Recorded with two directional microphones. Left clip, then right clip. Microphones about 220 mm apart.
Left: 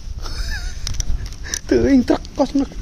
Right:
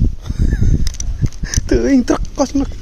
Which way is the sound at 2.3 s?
15° right (ahead or behind).